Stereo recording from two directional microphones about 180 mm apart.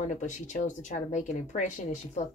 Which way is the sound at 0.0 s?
40° left (ahead or behind).